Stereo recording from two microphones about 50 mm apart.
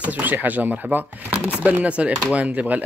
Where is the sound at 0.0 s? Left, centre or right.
Right.